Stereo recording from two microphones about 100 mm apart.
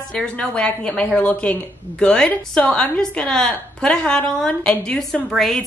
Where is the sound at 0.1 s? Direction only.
10° left (ahead or behind).